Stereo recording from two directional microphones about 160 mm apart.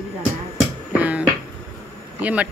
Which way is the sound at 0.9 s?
10° right (ahead or behind).